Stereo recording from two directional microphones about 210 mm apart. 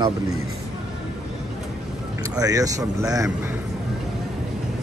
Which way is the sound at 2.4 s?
15° right (ahead or behind).